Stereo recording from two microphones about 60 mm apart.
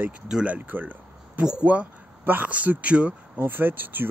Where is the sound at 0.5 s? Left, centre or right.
Right.